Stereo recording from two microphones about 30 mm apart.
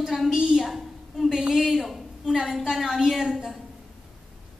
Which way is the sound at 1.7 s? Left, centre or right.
Centre.